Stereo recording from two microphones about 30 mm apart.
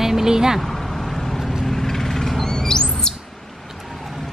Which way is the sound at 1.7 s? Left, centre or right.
Centre.